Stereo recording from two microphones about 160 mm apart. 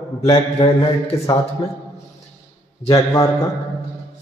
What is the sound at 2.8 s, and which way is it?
Speech, 20° left (ahead or behind).